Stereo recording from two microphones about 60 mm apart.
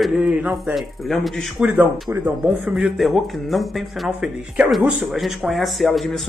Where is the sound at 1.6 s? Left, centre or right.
Centre.